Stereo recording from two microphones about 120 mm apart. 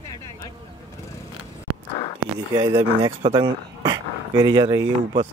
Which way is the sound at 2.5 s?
40° right (ahead or behind).